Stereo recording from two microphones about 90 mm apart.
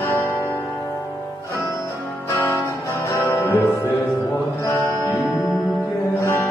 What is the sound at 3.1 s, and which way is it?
Music, 35° left (ahead or behind).